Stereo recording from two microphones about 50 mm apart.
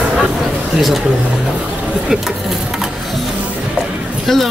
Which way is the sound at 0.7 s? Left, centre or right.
Centre.